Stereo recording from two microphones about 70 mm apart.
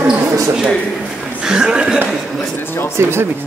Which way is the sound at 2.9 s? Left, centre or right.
Right.